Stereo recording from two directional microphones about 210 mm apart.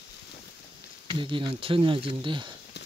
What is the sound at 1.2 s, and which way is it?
Speech, 25° right (ahead or behind).